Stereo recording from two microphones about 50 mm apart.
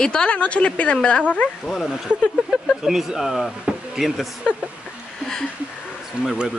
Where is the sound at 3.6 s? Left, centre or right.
Centre.